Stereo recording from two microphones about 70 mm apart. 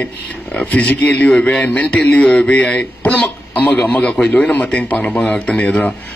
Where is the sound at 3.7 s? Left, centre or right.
Centre.